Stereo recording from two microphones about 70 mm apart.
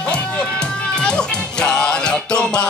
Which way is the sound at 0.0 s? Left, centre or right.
Centre.